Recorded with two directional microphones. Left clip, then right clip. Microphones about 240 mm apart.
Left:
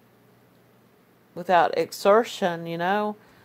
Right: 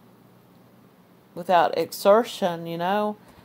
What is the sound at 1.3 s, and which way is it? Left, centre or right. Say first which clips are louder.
Speech: even; left.